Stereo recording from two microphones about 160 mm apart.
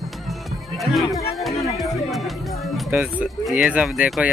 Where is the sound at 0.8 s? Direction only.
Centre (ahead or behind).